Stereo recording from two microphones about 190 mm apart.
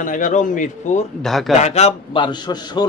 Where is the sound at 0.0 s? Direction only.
45° left (ahead or behind).